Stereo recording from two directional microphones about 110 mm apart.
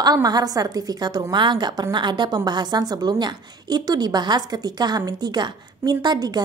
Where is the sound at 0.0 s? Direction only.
35° right (ahead or behind).